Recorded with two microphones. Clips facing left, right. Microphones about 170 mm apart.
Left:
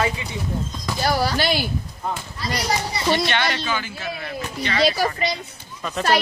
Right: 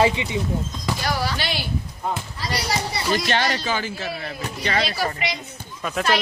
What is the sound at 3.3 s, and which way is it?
Speech, 35° right (ahead or behind).